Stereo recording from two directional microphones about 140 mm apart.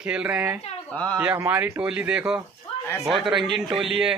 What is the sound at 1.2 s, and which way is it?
A man's voice, 15° right (ahead or behind).